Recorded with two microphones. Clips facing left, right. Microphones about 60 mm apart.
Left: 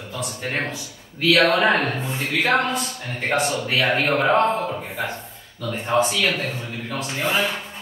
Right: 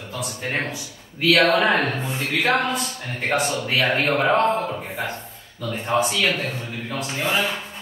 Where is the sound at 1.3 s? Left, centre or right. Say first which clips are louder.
Even; centre.